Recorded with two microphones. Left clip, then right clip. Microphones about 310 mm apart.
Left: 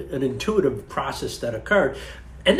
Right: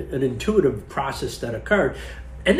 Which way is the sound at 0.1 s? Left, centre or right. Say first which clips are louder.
Right 1 dB; centre.